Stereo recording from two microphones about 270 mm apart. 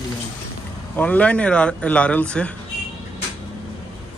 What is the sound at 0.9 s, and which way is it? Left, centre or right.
Speech, centre.